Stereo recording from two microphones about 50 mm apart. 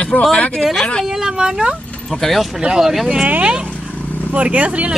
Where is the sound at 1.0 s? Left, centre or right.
Centre.